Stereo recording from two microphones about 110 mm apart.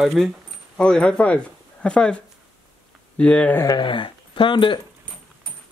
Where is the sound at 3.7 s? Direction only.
45° left (ahead or behind).